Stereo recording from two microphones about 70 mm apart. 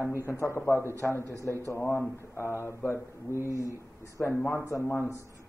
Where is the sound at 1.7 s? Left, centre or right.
Left.